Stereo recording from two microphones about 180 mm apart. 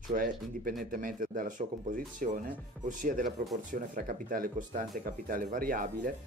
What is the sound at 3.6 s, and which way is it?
Speech, 45° right (ahead or behind).